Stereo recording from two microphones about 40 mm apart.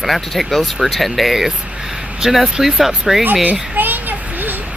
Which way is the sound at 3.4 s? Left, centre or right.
Right.